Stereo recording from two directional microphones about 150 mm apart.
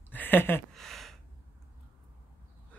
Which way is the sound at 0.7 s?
Centre (ahead or behind).